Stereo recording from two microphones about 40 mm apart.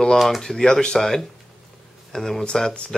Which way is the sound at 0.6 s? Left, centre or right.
Centre.